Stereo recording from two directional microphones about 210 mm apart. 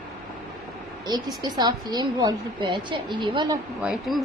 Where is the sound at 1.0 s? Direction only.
20° right (ahead or behind).